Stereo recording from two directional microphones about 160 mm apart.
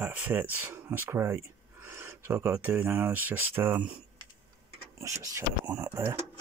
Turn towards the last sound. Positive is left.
turn(degrees=-15)  # may be behind; listen again after turning